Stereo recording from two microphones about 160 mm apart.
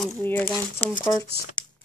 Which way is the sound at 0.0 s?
10° left (ahead or behind).